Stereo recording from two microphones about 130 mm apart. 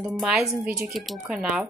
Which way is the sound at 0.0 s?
5° right (ahead or behind).